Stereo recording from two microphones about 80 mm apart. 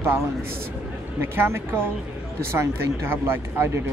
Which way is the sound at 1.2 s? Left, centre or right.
Right.